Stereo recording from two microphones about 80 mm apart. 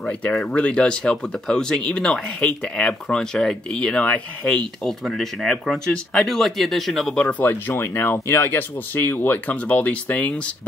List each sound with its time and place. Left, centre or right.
0.5 s speech: centre
7.2 s speech: left